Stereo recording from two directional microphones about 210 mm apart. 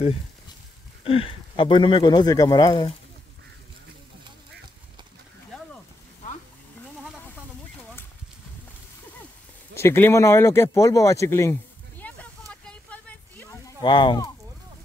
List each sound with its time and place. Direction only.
1.0 s speech: 25° left (ahead or behind)
9.8 s speech: 10° left (ahead or behind)
12.0 s a sound: 5° left (ahead or behind)